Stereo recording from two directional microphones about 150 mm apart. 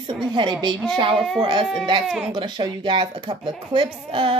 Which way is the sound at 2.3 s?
30° right (ahead or behind).